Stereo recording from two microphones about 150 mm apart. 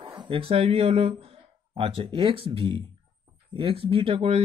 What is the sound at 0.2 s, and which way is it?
Speech, 40° right (ahead or behind).